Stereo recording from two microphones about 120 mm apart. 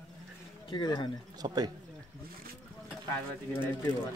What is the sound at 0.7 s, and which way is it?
Speech, 40° left (ahead or behind).